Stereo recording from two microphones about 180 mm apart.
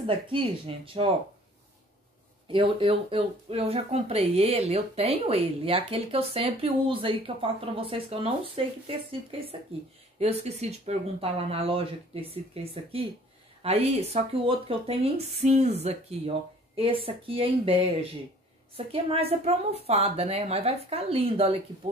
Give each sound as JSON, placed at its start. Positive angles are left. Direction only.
{"t": 0.0, "sound": "speech", "side_deg": -30}
{"t": 2.4, "sound": "speech", "side_deg": -30}